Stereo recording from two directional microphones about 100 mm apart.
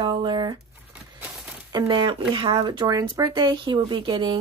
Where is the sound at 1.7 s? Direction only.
50° right (ahead or behind).